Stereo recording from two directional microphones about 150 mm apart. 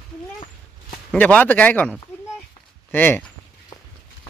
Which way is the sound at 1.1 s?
10° left (ahead or behind).